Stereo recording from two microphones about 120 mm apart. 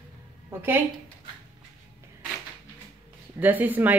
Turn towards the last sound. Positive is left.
turn(degrees=-15)  # may be behind; listen again after turning